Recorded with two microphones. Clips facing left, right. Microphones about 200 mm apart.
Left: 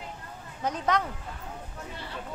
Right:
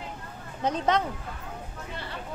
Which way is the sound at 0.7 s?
25° right (ahead or behind).